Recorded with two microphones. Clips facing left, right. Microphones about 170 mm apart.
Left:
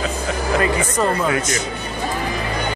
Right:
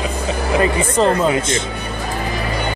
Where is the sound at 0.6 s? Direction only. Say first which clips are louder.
Right 5 dB; 25° right (ahead or behind).